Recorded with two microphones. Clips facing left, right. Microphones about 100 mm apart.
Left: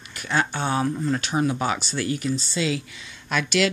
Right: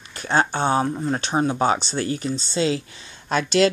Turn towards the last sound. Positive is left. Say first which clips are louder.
# right 4 dB
turn(degrees=-35)  # may be behind; listen again after turning